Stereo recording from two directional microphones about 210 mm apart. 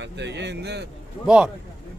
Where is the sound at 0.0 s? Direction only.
55° right (ahead or behind).